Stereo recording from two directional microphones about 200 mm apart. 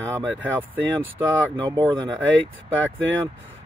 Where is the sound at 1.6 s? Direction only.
20° right (ahead or behind).